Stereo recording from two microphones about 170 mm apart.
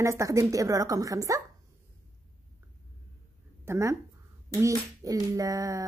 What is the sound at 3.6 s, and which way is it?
Speech, 15° right (ahead or behind).